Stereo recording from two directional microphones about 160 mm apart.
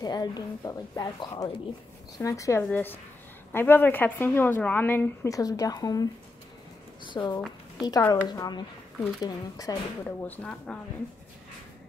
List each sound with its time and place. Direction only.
0.0 s a woman's voice: 25° left (ahead or behind)
7.1 s a woman's voice: 25° left (ahead or behind)
8.0 s a woman's voice: 15° left (ahead or behind)
8.3 s a woman's voice: 25° left (ahead or behind)
10.0 s a woman's voice: 10° left (ahead or behind)